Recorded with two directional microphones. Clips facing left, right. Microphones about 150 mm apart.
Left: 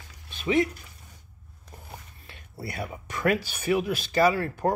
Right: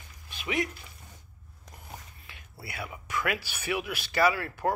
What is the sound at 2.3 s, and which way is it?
Speech, 40° left (ahead or behind).